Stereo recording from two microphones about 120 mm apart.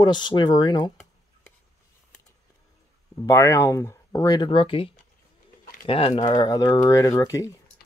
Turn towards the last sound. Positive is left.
turn(degrees=25)  # may be behind; listen again after turning